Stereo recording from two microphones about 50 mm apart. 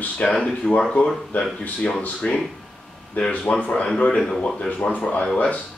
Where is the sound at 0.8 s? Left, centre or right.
Centre.